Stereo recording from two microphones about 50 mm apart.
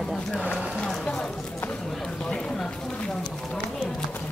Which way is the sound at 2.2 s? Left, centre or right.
Centre.